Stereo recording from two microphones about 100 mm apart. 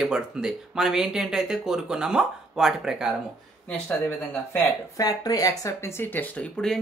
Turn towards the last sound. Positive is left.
turn(degrees=15)  # may be behind; listen again after turning